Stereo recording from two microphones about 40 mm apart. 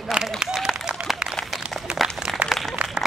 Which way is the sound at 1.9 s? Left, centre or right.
Right.